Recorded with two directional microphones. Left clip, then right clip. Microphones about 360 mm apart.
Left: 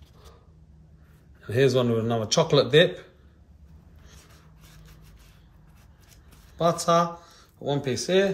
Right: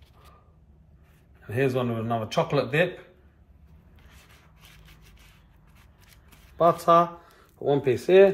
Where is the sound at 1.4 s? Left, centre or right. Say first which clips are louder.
Left 4 dB; centre.